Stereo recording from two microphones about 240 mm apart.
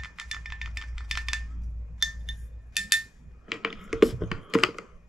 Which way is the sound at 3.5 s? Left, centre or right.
Centre.